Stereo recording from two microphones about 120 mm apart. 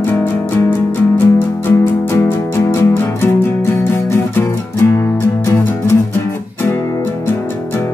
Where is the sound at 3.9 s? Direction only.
20° left (ahead or behind).